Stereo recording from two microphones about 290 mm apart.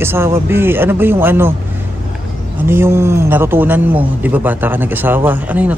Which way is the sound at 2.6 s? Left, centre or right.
Centre.